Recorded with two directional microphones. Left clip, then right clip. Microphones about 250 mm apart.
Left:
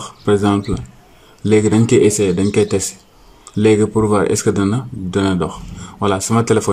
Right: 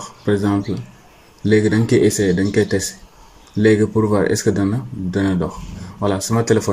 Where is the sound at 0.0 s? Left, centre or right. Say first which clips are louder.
Left 4 dB; centre.